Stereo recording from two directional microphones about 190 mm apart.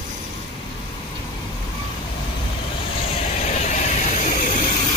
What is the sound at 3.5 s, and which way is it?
Vehicle, 40° left (ahead or behind).